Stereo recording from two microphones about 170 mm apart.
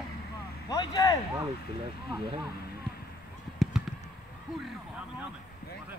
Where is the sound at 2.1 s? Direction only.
25° right (ahead or behind).